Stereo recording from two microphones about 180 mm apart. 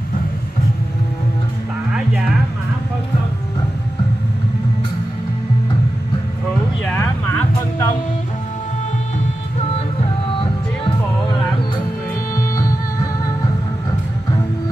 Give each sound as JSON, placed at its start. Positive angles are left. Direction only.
{"t": 6.9, "sound": "a sound", "side_deg": 10}
{"t": 9.6, "sound": "music", "side_deg": 35}
{"t": 12.4, "sound": "music", "side_deg": 20}